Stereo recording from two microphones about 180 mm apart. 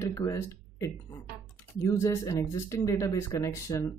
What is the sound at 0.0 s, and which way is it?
Speech, 15° left (ahead or behind).